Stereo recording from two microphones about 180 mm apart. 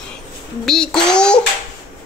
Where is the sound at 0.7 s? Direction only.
5° left (ahead or behind).